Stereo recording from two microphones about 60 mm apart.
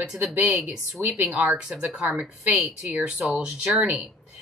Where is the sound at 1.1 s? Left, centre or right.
Centre.